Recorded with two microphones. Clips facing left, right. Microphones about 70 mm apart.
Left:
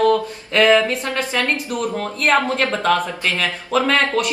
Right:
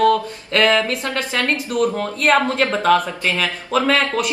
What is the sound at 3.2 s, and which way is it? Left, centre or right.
Speech, right.